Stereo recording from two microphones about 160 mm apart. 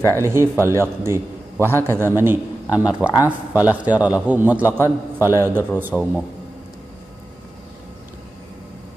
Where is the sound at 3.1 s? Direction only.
20° left (ahead or behind).